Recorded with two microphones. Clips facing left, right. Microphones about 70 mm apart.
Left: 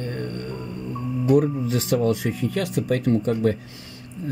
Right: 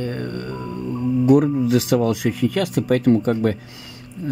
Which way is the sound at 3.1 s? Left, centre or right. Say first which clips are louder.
Right 3 dB; right.